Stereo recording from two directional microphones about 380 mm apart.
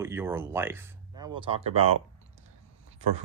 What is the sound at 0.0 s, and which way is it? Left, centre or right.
Speech, centre.